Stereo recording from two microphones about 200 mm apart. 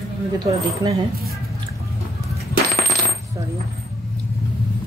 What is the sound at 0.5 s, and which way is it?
Speech, 30° right (ahead or behind).